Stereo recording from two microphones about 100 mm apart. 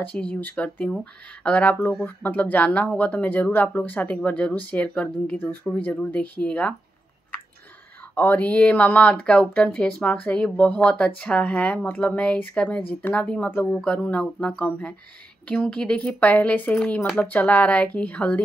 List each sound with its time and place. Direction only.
0.1 s speech: 15° left (ahead or behind)
8.1 s speech: 20° left (ahead or behind)